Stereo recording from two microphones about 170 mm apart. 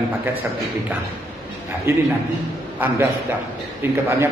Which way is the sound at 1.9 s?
15° right (ahead or behind).